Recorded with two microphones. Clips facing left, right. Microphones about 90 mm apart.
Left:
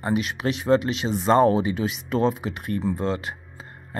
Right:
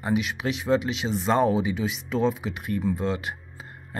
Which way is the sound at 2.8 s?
35° left (ahead or behind).